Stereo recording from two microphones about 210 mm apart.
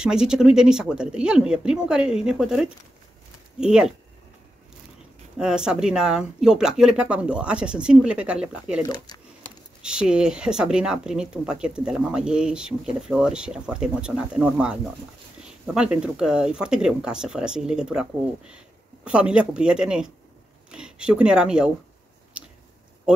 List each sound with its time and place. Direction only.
0.0 s speech: 5° right (ahead or behind)
5.4 s speech: 5° right (ahead or behind)
8.8 s speech: 20° left (ahead or behind)
9.8 s speech: 5° right (ahead or behind)
19.0 s speech: 5° right (ahead or behind)